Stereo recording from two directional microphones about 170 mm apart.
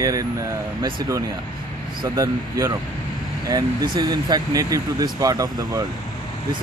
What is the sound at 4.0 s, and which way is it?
Speech, 25° right (ahead or behind).